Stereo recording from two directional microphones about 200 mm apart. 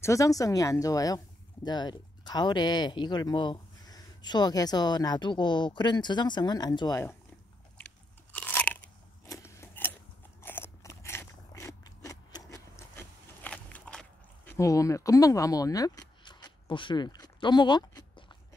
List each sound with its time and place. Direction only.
0.0 s speech: 15° left (ahead or behind)
7.7 s crunch: 5° left (ahead or behind)
9.2 s a sound: 15° left (ahead or behind)
10.4 s biting: 10° left (ahead or behind)